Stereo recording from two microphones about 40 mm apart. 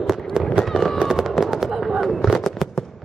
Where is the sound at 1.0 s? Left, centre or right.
Centre.